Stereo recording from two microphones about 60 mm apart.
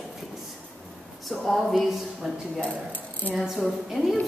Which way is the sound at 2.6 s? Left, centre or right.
Left.